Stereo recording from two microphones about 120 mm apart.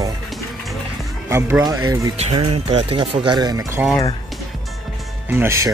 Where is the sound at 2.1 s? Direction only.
60° right (ahead or behind); by 3.6 s 35° right (ahead or behind).